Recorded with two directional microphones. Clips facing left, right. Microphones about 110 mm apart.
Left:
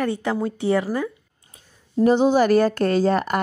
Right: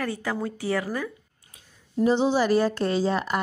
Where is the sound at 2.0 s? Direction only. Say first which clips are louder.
Left 5 dB; 50° left (ahead or behind).